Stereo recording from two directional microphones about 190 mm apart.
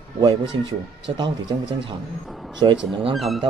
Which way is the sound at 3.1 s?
Centre (ahead or behind).